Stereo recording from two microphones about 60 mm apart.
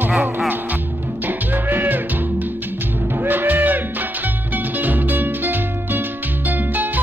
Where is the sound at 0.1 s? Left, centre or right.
Centre.